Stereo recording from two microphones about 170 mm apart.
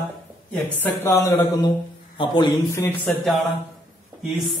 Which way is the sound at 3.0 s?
Centre (ahead or behind).